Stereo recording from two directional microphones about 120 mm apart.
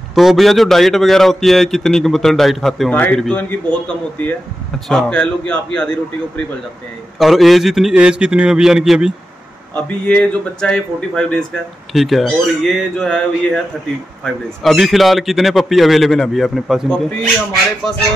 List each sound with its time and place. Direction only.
0.1 s a man's voice: centre (ahead or behind)
2.9 s a man's voice: 15° left (ahead or behind); by 9.1 s 5° right (ahead or behind)
10.0 s a man's voice: 5° left (ahead or behind)